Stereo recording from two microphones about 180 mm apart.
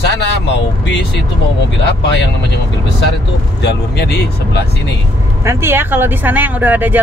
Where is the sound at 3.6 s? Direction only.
70° left (ahead or behind).